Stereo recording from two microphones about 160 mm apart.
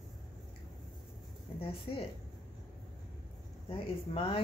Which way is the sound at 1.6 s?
35° left (ahead or behind).